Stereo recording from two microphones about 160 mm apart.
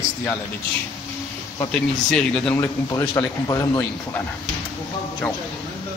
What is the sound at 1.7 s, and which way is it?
Speech, 5° left (ahead or behind).